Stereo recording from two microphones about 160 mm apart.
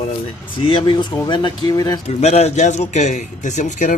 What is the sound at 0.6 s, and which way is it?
Speech, 30° left (ahead or behind).